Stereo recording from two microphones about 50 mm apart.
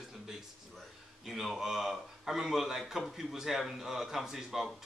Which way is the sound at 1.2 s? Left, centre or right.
Centre.